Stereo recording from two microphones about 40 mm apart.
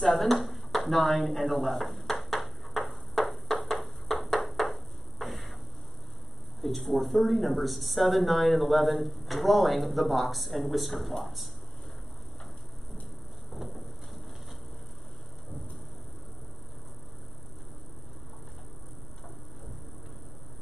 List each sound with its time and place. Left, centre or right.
0.0 s a sound: centre
6.6 s speech: centre
13.5 s vehicle: centre